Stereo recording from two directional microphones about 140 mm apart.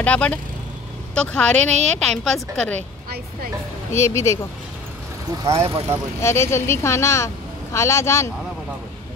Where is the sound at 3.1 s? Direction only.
90° right.